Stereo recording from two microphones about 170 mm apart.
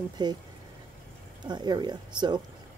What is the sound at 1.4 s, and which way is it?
Speech, 25° right (ahead or behind).